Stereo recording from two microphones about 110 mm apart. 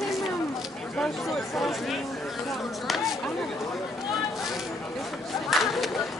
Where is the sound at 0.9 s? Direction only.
5° left (ahead or behind).